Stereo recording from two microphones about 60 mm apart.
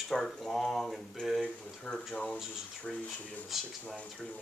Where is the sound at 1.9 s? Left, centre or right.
Centre.